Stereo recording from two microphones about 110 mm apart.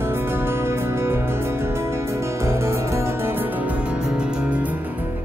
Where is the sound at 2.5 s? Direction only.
25° right (ahead or behind).